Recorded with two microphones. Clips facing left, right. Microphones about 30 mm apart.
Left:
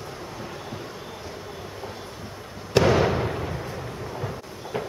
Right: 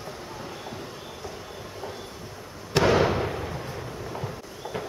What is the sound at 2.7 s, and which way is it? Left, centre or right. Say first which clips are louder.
Fireworks: left 1 dB; centre.